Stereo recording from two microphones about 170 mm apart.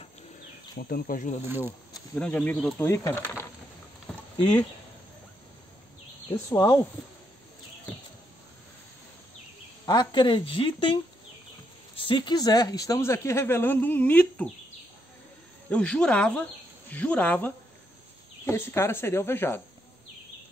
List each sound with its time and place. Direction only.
0.7 s speech: 65° left (ahead or behind)
2.1 s speech: 10° left (ahead or behind)
4.4 s a woman's voice: 25° left (ahead or behind)
6.3 s a woman's voice: 20° left (ahead or behind)
9.8 s a woman's voice: 25° left (ahead or behind)
12.0 s speech: 30° left (ahead or behind); by 14.5 s 10° left (ahead or behind)
15.7 s speech: 5° left (ahead or behind)